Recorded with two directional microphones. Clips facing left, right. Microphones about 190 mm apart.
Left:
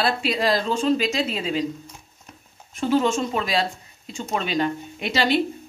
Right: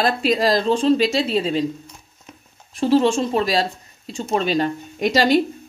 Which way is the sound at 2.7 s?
35° right (ahead or behind).